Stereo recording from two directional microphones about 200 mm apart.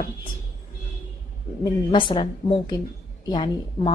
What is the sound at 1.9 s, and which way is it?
A woman's voice, 25° left (ahead or behind).